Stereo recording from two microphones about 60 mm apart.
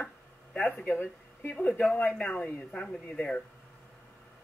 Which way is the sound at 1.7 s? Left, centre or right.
Centre.